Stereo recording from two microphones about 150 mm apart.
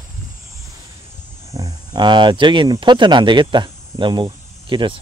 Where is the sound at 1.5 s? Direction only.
25° right (ahead or behind).